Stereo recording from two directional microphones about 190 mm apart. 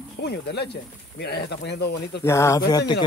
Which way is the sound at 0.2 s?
60° left (ahead or behind).